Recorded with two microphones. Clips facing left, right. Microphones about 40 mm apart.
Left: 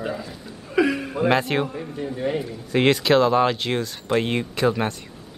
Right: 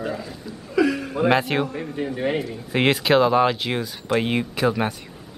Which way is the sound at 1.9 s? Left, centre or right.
Right.